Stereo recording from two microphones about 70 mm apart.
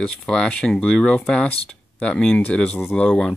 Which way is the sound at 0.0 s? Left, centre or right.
Centre.